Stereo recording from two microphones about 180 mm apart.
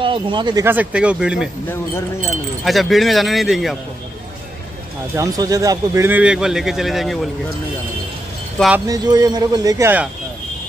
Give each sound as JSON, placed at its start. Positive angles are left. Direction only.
{"t": 0.0, "sound": "speech", "side_deg": -30}
{"t": 0.7, "sound": "speech", "side_deg": -10}
{"t": 2.6, "sound": "speech", "side_deg": 0}
{"t": 5.1, "sound": "speech", "side_deg": -20}
{"t": 8.8, "sound": "speech", "side_deg": -20}